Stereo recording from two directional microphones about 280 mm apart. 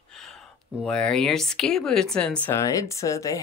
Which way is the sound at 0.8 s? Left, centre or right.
Centre.